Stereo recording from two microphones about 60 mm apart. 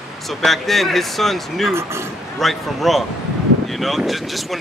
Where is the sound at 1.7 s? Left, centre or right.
Right.